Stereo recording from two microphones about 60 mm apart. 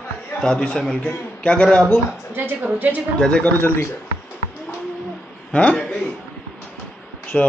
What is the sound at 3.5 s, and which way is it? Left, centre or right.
Speech, left.